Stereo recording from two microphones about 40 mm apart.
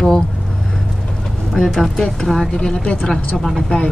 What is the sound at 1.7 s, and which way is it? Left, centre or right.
Speech, centre.